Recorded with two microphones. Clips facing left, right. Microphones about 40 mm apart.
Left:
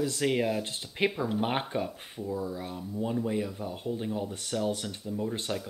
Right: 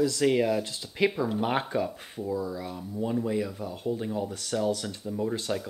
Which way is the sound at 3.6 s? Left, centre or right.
Centre.